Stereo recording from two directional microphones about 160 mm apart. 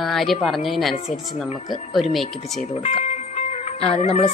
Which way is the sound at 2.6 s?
45° left (ahead or behind).